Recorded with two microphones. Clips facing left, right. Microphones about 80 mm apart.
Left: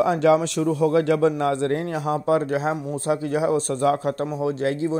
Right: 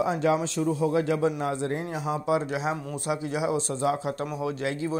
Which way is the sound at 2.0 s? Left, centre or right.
Left.